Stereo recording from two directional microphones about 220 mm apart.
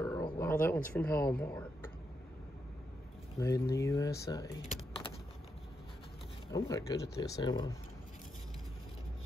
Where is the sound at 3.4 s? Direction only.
15° left (ahead or behind).